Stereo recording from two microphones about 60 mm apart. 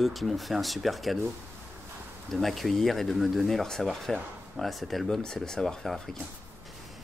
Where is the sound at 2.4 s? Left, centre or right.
Centre.